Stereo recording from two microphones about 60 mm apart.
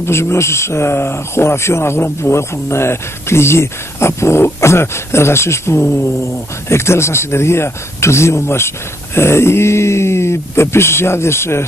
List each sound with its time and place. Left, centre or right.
0.0 s speech: left